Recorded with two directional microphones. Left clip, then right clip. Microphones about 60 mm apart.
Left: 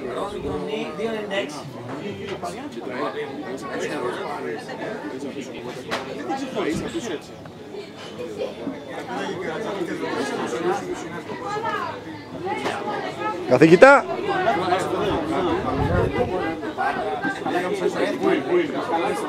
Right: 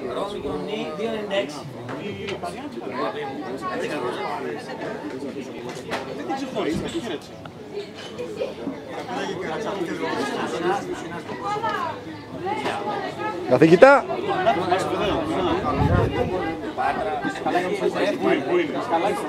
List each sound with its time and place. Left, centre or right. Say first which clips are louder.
0.7 s a sound: even; centre
3.9 s speech: even; centre
6.2 s speech: even; centre
9.1 s speech: even; centre
13.6 s speech: left 1 dB; left
14.4 s speech: right 1 dB; centre